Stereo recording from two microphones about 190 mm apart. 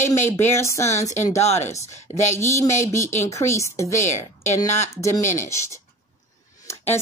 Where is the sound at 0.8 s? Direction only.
40° left (ahead or behind).